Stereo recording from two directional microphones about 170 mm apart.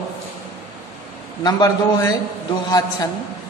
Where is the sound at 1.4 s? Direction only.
25° left (ahead or behind).